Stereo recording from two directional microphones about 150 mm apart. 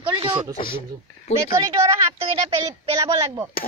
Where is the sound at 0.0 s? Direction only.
35° right (ahead or behind).